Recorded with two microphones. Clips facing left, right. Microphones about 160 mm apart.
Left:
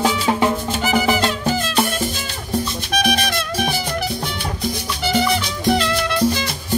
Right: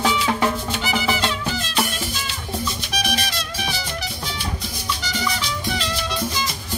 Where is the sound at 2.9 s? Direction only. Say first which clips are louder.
Left 9 dB; 55° left (ahead or behind).